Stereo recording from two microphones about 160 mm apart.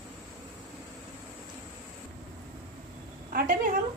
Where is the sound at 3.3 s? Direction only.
65° right (ahead or behind).